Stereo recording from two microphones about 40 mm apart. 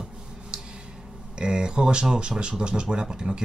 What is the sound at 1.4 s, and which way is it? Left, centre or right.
Speech, centre.